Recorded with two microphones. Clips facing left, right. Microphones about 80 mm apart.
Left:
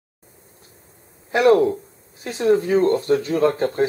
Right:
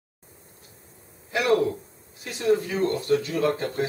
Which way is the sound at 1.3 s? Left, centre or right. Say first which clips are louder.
Left 7 dB; left.